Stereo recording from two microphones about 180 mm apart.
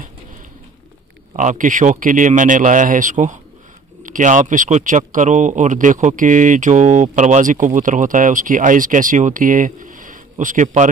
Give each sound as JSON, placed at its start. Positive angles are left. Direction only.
{"t": 1.3, "sound": "speech", "side_deg": -45}